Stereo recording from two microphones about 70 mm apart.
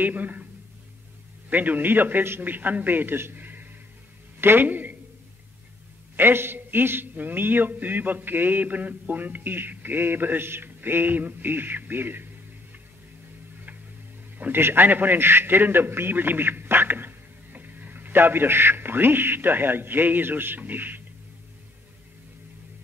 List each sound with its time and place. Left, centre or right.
0.0 s a man's voice: right
1.5 s a man's voice: right
6.1 s a man's voice: right
14.4 s a man's voice: right